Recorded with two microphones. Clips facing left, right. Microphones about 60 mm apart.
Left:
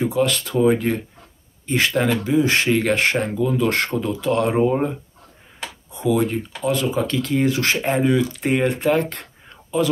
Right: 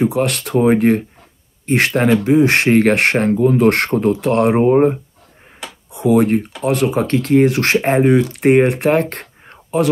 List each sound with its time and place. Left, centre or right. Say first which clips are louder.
0.1 s speech: right 3 dB; right
5.9 s speech: right 7 dB; right
9.1 s a sound: right 4 dB; right